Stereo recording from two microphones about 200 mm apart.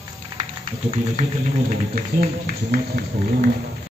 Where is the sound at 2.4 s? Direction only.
45° right (ahead or behind).